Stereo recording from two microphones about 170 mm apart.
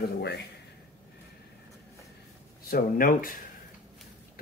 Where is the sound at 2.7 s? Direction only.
55° left (ahead or behind).